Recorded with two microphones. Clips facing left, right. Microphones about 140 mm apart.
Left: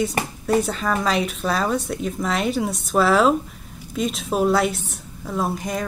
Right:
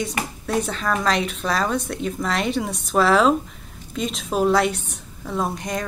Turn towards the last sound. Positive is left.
turn(degrees=0)  # may be behind; listen again after turning